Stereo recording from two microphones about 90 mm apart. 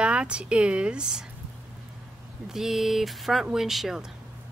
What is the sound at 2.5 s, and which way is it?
A woman's voice, 5° right (ahead or behind).